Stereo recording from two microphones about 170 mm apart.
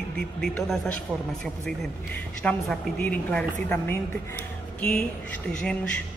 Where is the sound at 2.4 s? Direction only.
5° left (ahead or behind).